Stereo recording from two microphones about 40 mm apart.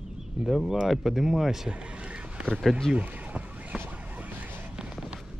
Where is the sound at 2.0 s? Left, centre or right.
Right.